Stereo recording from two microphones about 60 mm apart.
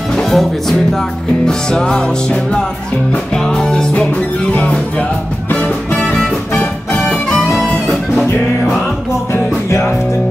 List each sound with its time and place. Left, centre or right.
0.1 s music: centre; by 5.0 s left
6.0 s music: centre
7.5 s music: centre
9.3 s music: left